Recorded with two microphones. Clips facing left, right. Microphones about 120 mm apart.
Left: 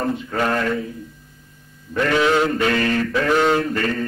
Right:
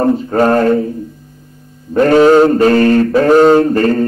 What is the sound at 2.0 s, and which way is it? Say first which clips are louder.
Mantra: right 11 dB; 40° right (ahead or behind).